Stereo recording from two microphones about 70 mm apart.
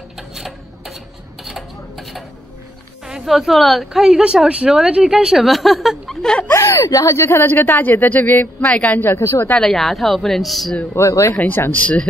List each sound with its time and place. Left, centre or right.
0.3 s typewriter: centre
1.4 s a sound: centre
3.1 s a woman's voice: centre
6.5 s a woman's voice: left
9.1 s a woman's voice: left
9.5 s a woman's voice: centre
11.0 s speech: left
11.5 s speech: left